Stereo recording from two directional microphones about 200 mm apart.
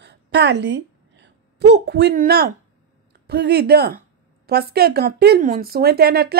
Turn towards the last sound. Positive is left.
turn(degrees=-50)  # may be behind; listen again after turning